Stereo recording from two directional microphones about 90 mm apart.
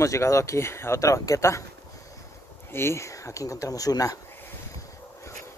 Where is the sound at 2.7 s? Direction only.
30° left (ahead or behind).